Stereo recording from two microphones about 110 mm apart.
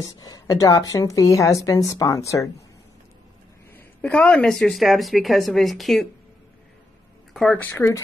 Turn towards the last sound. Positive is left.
turn(degrees=15)  # may be behind; listen again after turning